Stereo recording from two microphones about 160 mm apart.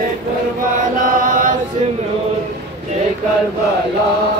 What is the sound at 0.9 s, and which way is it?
Chant, 60° right (ahead or behind).